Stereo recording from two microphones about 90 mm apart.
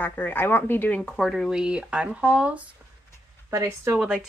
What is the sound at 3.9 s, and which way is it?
Speech, 10° right (ahead or behind).